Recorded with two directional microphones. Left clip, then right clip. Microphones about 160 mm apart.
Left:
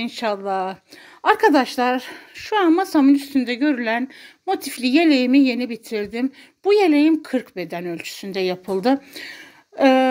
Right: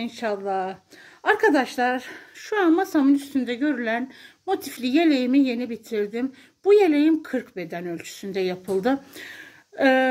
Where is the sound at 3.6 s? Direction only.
55° left (ahead or behind).